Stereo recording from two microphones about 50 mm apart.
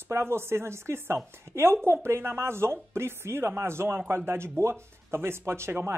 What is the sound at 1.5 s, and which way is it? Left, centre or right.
Speech, right.